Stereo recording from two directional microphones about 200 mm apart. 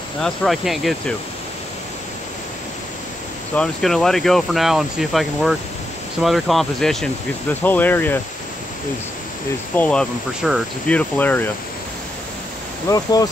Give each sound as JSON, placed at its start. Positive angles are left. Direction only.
{"t": 0.2, "sound": "speech", "side_deg": 0}
{"t": 3.5, "sound": "speech", "side_deg": 0}
{"t": 9.8, "sound": "speech", "side_deg": 5}
{"t": 12.8, "sound": "speech", "side_deg": 15}